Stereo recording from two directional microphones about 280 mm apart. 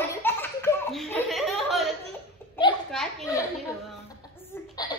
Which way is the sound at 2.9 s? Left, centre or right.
Centre.